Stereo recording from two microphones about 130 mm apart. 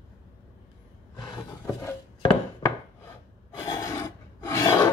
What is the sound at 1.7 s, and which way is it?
Chopping, 15° left (ahead or behind).